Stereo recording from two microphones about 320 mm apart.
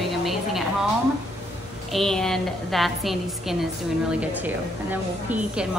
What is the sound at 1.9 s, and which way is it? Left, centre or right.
A woman's voice, centre.